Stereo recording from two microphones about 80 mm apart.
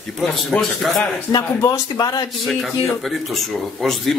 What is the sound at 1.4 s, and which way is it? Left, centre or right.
Speech, left.